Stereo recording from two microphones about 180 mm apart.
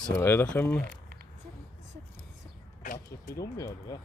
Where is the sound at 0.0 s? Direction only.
10° left (ahead or behind).